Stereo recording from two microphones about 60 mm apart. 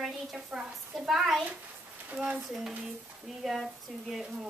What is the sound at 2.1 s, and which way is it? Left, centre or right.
Speech, centre.